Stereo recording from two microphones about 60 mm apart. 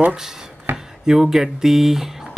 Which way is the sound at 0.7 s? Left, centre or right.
Centre.